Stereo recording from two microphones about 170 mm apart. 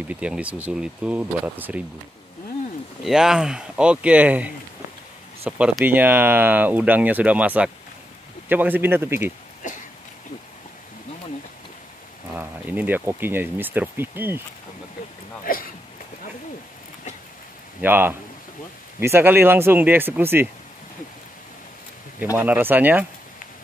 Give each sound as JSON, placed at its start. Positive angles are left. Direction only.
{"t": 0.1, "sound": "speech", "side_deg": -5}
{"t": 3.0, "sound": "speech", "side_deg": -5}
{"t": 12.4, "sound": "speech", "side_deg": -10}
{"t": 15.4, "sound": "a sound", "side_deg": 60}
{"t": 17.8, "sound": "speech", "side_deg": -10}
{"t": 22.2, "sound": "speech", "side_deg": -10}